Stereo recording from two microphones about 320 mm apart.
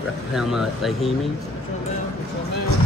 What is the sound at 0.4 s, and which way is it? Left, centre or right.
Speech, centre.